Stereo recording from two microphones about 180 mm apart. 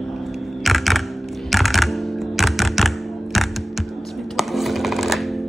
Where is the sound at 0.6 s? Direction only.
Centre (ahead or behind).